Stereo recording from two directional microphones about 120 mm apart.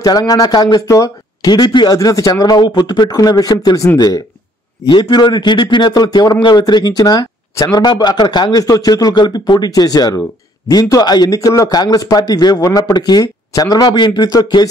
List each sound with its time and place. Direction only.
0.0 s speech: 30° left (ahead or behind)
4.8 s speech: 40° left (ahead or behind)